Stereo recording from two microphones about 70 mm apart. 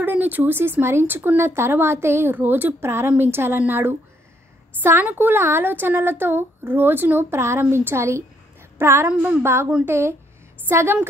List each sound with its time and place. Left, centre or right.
0.0 s speech: right
5.1 s a woman's voice: right
9.0 s a woman's voice: right
9.4 s speech: right